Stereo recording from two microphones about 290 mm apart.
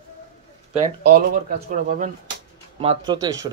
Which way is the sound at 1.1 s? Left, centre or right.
Right.